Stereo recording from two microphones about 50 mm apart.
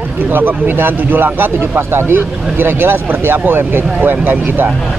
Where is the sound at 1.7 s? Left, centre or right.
Right.